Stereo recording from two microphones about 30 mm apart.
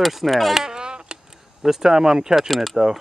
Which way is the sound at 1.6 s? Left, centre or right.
Centre.